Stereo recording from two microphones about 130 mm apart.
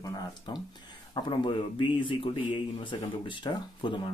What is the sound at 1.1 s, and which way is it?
Speech, 40° left (ahead or behind).